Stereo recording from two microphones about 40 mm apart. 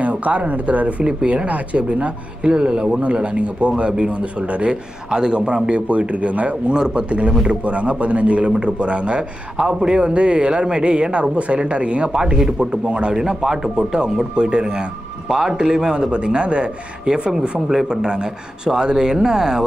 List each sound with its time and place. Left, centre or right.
0.0 s speech: right
3.0 s speech: right
5.1 s speech: centre
12.2 s a man's voice: centre
13.1 s a man's voice: centre